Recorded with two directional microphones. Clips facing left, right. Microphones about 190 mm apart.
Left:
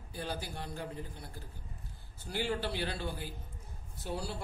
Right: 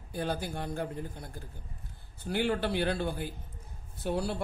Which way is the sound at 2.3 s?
55° right (ahead or behind).